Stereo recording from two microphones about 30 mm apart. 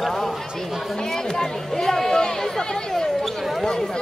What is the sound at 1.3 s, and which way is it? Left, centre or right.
Speech, centre.